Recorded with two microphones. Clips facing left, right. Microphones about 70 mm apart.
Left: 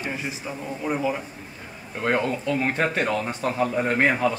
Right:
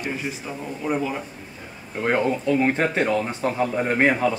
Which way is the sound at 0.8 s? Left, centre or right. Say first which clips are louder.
Right 1 dB; centre.